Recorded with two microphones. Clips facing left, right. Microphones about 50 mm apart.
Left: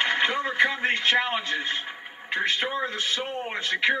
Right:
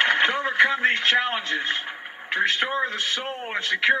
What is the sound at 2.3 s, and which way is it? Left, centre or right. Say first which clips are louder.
Speech: right 3 dB; right.